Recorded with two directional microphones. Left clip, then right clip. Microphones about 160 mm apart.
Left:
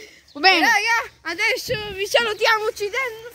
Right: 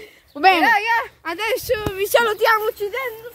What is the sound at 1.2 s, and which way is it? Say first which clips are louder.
A woman's voice: left 1 dB; 50° right (ahead or behind).